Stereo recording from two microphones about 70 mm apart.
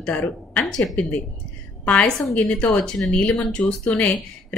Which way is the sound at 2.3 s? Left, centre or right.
Centre.